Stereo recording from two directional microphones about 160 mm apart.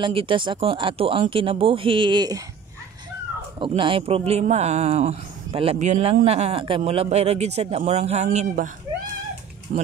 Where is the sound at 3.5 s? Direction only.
30° right (ahead or behind).